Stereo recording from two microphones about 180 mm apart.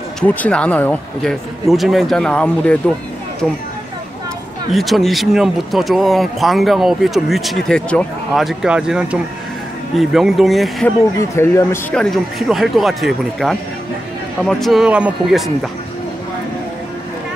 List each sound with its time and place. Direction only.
0.3 s speech: 5° left (ahead or behind)
4.7 s speech: centre (ahead or behind)
11.1 s speech: 15° left (ahead or behind)
12.0 s speech: centre (ahead or behind)